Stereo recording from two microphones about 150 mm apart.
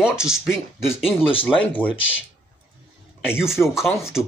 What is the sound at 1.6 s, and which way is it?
Grunt, 10° left (ahead or behind).